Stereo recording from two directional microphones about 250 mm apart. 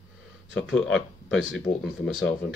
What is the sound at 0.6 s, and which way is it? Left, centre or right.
Speech, left.